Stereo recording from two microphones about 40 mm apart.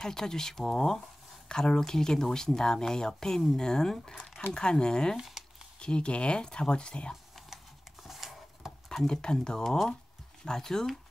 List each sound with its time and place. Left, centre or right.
0.0 s speech: centre
5.1 s speech: centre
5.8 s speech: left
7.4 s a sound: centre
8.8 s speech: centre